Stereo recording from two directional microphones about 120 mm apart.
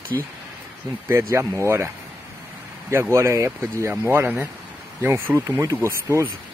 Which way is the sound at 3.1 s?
25° right (ahead or behind).